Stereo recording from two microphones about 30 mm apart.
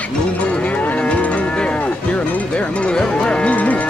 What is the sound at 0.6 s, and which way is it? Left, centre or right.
Moo, left.